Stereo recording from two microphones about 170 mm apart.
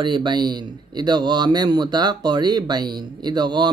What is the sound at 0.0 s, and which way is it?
Speech, 25° right (ahead or behind).